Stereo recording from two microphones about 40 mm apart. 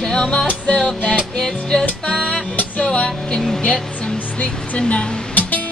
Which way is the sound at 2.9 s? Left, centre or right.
Left.